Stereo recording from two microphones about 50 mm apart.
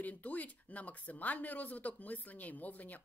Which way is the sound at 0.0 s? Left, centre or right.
Left.